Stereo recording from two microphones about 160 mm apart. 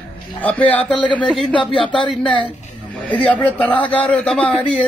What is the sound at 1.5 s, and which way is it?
Speech, 35° left (ahead or behind).